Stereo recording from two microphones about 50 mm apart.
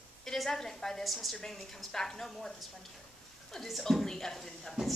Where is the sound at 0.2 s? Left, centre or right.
Centre.